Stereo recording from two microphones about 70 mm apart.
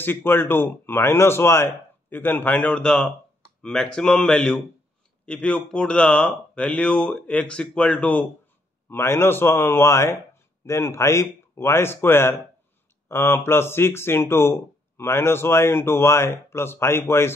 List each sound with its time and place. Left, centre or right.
0.0 s speech: left
2.0 s speech: left
8.8 s speech: left